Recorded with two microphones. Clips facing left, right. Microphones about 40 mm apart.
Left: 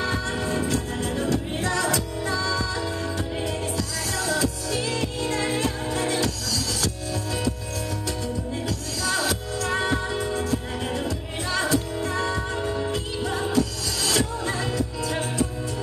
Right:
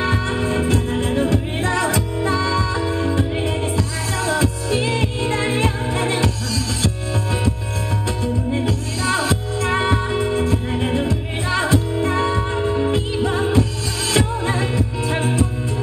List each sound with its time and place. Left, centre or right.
0.0 s music: right
8.5 s music: right